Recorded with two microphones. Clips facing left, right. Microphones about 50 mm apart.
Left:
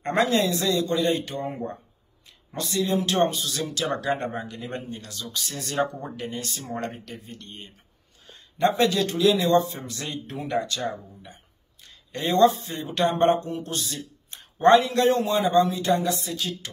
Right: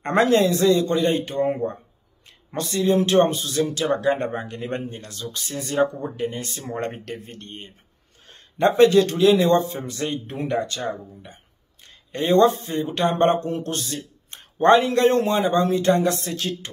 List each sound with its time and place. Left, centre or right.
0.0 s a man's voice: right
7.1 s a man's voice: right
11.9 s a man's voice: right
13.1 s a man's voice: right
13.5 s speech: right
14.3 s a man's voice: right